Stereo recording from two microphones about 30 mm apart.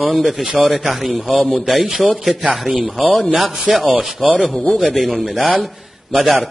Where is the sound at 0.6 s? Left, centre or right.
Right.